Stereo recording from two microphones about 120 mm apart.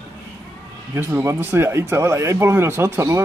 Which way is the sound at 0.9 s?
20° right (ahead or behind).